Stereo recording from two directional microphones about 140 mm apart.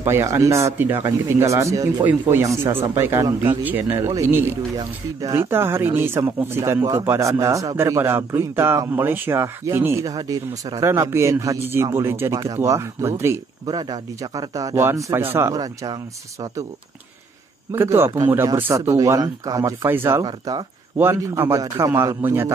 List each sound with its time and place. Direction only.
0.0 s a man's voice: 20° right (ahead or behind)
17.7 s speech: 20° right (ahead or behind)
20.2 s speech: 30° right (ahead or behind)
21.0 s a man's voice: 15° right (ahead or behind)